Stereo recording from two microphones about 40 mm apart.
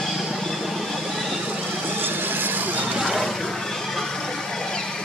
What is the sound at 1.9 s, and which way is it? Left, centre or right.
Vehicle, right.